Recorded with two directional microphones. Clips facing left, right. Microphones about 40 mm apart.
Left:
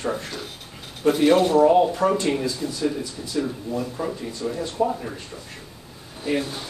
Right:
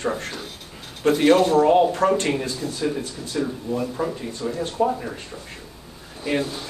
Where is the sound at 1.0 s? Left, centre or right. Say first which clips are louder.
Right 1 dB; right.